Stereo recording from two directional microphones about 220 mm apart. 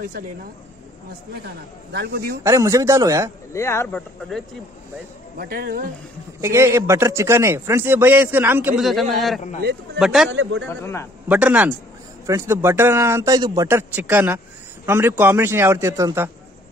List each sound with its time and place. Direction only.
1.4 s a man's voice: 45° right (ahead or behind)
2.4 s a man's voice: 15° right (ahead or behind)
3.5 s speech: 10° left (ahead or behind)
5.4 s speech: 40° right (ahead or behind)
6.4 s a man's voice: 10° right (ahead or behind)
10.3 s speech: 55° right (ahead or behind)
10.7 s speech: 10° left (ahead or behind)
11.2 s a man's voice: 5° right (ahead or behind)